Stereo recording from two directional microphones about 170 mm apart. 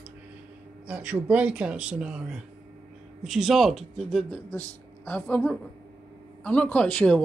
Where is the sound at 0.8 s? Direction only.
10° right (ahead or behind).